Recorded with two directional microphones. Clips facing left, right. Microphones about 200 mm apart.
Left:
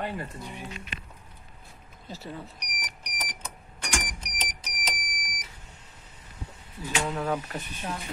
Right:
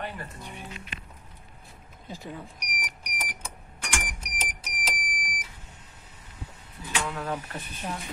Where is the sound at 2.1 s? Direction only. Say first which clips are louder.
Even; 10° right (ahead or behind).